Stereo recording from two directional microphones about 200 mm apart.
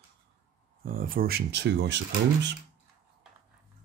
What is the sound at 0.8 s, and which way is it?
Speech, 45° right (ahead or behind).